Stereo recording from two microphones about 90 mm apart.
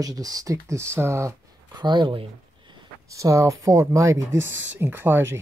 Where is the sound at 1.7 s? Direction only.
55° right (ahead or behind).